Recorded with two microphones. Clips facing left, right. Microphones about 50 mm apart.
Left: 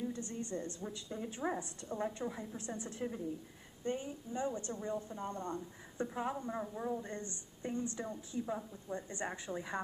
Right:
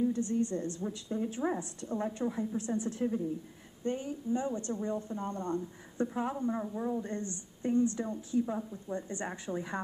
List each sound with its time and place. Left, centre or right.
0.0 s a woman's voice: centre